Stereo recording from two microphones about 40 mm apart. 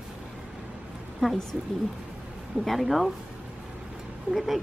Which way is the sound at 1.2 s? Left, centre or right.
Centre.